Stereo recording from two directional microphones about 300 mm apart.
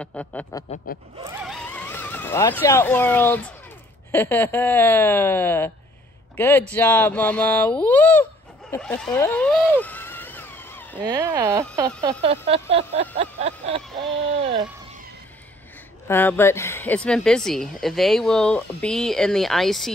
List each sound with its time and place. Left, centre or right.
0.0 s speech: centre
0.9 s speech: left
1.2 s a man's voice: centre
8.7 s a sound: centre
11.0 s speech: centre
12.0 s a sound: centre
16.1 s speech: centre